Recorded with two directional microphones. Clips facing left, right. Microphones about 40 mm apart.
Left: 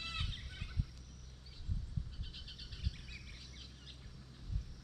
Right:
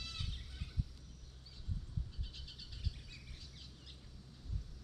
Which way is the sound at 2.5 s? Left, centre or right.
Centre.